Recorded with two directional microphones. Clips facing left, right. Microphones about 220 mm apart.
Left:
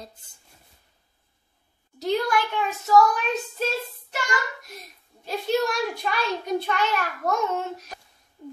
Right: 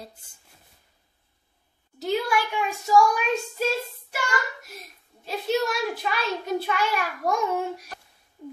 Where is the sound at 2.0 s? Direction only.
5° right (ahead or behind).